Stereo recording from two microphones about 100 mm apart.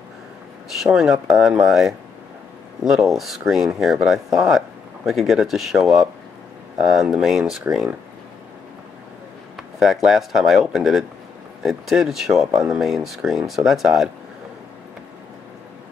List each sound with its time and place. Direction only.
0.7 s speech: 5° right (ahead or behind)
9.6 s speech: centre (ahead or behind)